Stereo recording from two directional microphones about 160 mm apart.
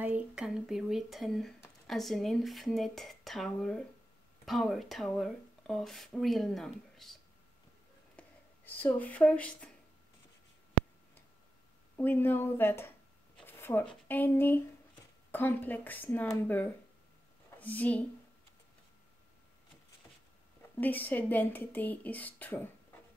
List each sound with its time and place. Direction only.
0.0 s speech: 5° right (ahead or behind)
8.2 s speech: 10° left (ahead or behind)
12.0 s speech: 15° left (ahead or behind)
13.5 s a sound: 15° left (ahead or behind)
14.0 s a woman's voice: 10° left (ahead or behind)
20.7 s speech: 10° left (ahead or behind)